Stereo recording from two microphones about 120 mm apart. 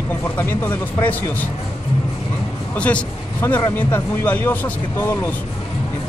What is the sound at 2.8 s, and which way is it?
A man's voice, 10° left (ahead or behind).